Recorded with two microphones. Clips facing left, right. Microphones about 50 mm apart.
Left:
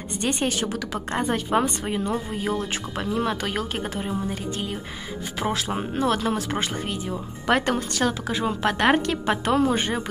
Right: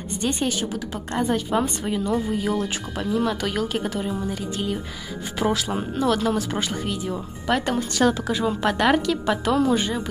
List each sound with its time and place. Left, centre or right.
0.2 s a woman's voice: left
0.9 s a woman's voice: left
2.1 s speech: left
3.1 s a woman's voice: left
3.4 s speech: left
5.8 s a woman's voice: left
7.4 s speech: left
8.0 s a woman's voice: left